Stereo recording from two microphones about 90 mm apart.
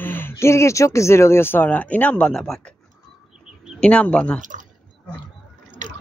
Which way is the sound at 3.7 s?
10° left (ahead or behind).